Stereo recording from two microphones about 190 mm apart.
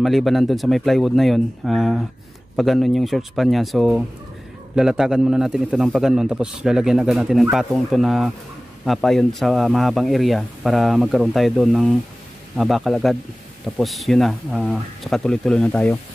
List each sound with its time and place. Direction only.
0.0 s speech: centre (ahead or behind)